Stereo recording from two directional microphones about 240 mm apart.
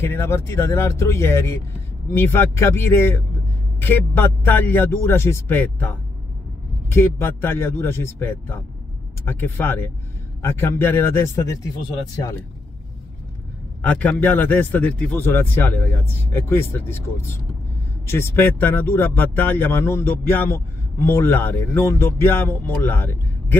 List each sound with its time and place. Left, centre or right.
0.0 s speech: centre
13.8 s speech: centre